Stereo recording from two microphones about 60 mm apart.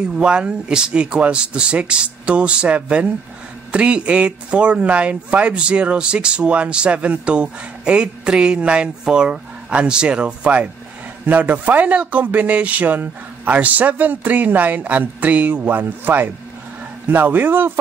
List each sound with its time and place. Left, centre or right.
0.0 s speech: centre; by 17.7 s right